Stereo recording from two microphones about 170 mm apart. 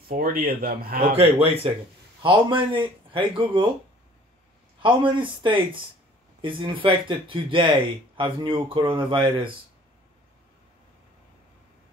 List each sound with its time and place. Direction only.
0.1 s speech: 60° right (ahead or behind)
1.4 s speech: 35° right (ahead or behind)
4.8 s speech: 30° right (ahead or behind)